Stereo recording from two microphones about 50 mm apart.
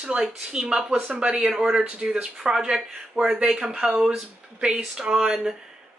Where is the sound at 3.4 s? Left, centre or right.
Centre.